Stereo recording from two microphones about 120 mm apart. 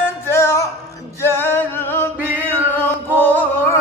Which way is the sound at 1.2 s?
20° left (ahead or behind).